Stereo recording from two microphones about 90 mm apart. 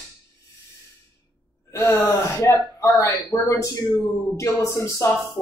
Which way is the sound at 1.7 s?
35° left (ahead or behind).